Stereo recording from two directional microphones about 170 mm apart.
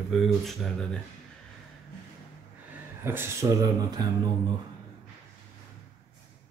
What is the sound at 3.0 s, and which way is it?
Speech, 15° right (ahead or behind).